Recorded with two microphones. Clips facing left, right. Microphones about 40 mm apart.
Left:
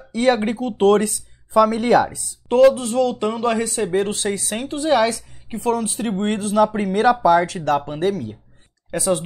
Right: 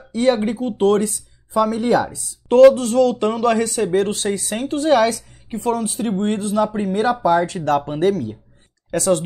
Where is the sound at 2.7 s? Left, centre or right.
Centre.